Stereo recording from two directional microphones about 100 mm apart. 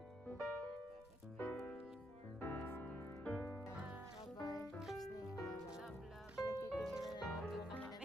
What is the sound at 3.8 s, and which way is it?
Music, 10° right (ahead or behind).